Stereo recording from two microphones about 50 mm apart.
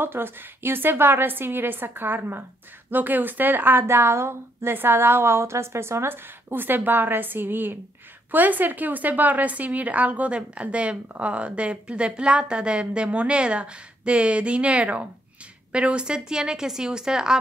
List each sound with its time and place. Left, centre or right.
0.0 s a woman's voice: right
3.8 s a woman's voice: right; by 17.4 s centre